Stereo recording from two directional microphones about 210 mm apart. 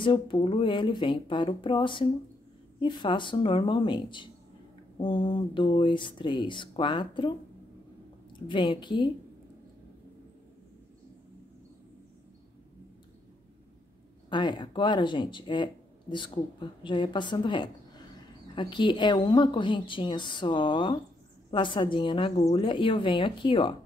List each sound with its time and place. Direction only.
0.0 s speech: 25° left (ahead or behind)
8.5 s speech: 20° left (ahead or behind)
14.3 s speech: 20° left (ahead or behind)